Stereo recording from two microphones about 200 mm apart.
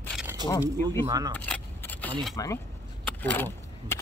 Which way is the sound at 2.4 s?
15° left (ahead or behind).